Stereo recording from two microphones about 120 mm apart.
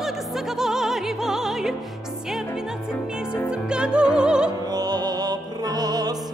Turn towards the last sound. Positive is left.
turn(degrees=-35)  # may be behind; listen again after turning